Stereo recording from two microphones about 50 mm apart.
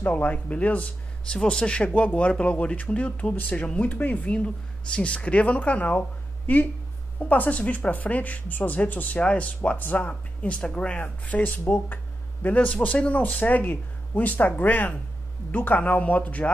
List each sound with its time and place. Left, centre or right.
0.0 s a woman's voice: left
1.3 s a woman's voice: centre
9.6 s a woman's voice: left; by 11.0 s centre
11.0 s a woman's voice: left
12.5 s a woman's voice: left